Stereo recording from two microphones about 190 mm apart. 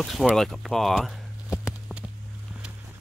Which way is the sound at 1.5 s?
15° left (ahead or behind).